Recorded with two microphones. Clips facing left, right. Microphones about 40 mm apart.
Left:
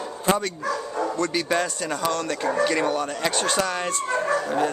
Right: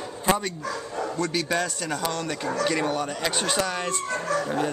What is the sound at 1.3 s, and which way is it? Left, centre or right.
Speech, centre.